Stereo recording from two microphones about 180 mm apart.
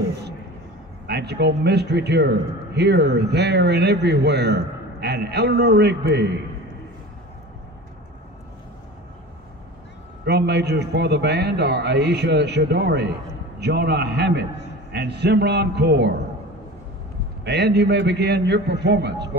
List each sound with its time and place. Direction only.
1.0 s a man's voice: 65° right (ahead or behind)
10.2 s a man's voice: 65° right (ahead or behind)
17.5 s a man's voice: 70° right (ahead or behind)